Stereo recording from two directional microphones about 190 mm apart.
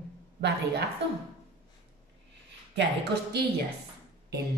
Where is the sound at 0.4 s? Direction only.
60° right (ahead or behind).